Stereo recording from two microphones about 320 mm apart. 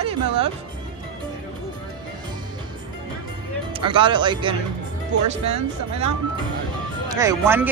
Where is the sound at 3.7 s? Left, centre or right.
Centre.